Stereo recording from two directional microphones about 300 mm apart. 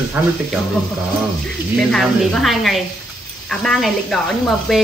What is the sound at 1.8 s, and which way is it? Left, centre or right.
Speech, centre.